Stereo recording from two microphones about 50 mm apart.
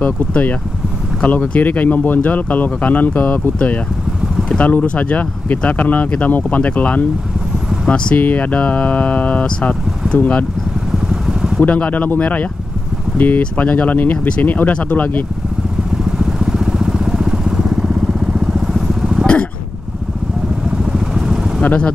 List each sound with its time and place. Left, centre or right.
0.0 s speech: left
7.9 s speech: centre
8.2 s speech: left
10.9 s vehicle: centre
11.6 s speech: left
13.6 s speech: left
14.1 s speech: left
14.4 s speech: left
16.2 s vehicle: centre
21.6 s speech: left